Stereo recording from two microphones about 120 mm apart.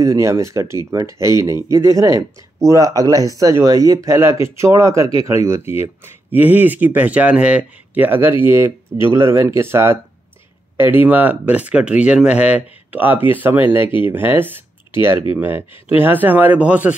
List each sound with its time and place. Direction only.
0.0 s speech: 25° right (ahead or behind)